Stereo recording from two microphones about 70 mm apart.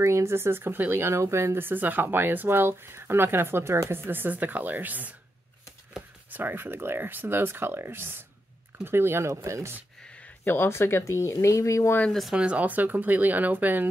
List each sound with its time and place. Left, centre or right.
0.0 s speech: right
6.3 s speech: right
10.4 s speech: left
12.1 s speech: centre
12.4 s speech: centre